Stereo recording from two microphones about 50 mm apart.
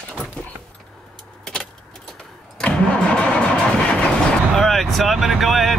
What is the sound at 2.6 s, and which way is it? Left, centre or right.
Vehicle, left.